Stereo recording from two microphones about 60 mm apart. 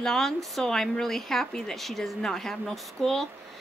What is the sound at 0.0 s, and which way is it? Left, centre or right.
A woman's voice, centre.